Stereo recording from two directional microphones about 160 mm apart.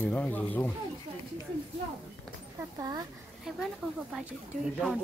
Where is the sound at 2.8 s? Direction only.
25° right (ahead or behind).